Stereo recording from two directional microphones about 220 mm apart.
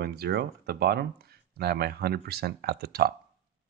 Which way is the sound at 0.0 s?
45° right (ahead or behind).